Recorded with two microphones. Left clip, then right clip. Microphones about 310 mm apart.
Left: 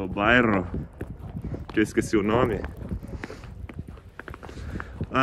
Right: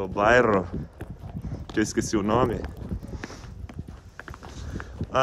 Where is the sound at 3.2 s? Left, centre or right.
Centre.